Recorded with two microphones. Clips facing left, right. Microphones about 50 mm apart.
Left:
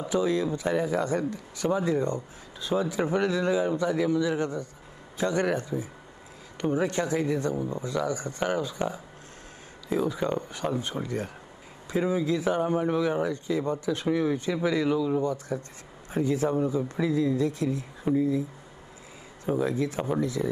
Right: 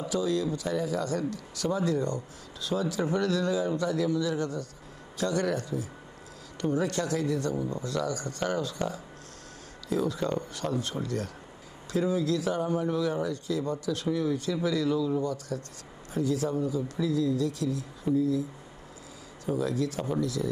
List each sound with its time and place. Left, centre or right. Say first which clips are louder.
0.1 s speech: left 3 dB; left
19.4 s speech: left 2 dB; left